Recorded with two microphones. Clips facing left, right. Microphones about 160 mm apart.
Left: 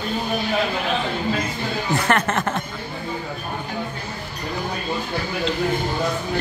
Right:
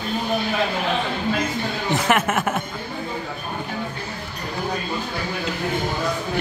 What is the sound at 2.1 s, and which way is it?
Speech, 10° right (ahead or behind).